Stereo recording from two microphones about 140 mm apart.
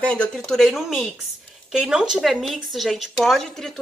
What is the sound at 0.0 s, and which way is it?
Speech, 10° left (ahead or behind).